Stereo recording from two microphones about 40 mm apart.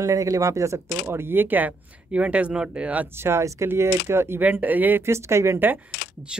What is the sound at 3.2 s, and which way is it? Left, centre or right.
Speech, right.